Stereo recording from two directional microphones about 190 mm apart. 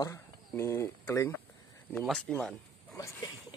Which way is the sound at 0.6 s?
15° left (ahead or behind).